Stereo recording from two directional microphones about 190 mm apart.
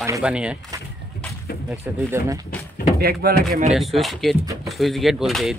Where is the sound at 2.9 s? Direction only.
55° right (ahead or behind).